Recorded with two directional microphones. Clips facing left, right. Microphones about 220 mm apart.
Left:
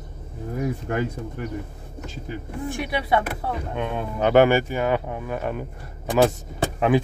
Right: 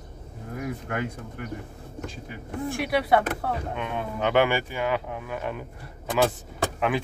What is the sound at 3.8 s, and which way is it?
Speech, 45° left (ahead or behind).